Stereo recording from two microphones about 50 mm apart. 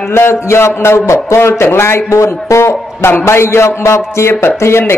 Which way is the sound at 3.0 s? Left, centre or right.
Left.